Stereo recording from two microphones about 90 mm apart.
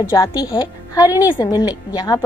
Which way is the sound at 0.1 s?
35° left (ahead or behind).